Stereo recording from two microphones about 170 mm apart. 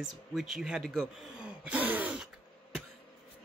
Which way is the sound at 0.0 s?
Centre (ahead or behind).